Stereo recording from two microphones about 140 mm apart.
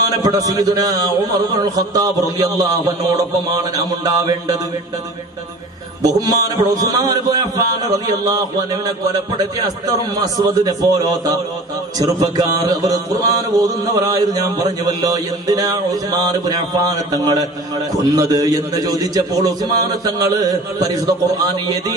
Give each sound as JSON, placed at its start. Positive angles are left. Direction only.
{"t": 0.2, "sound": "mantra", "side_deg": -25}
{"t": 6.0, "sound": "mantra", "side_deg": -25}